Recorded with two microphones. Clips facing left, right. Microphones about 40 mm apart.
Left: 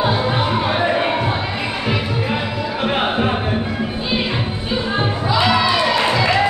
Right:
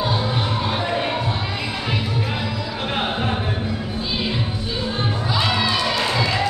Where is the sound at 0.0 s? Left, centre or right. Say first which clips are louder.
Left 5 dB; left.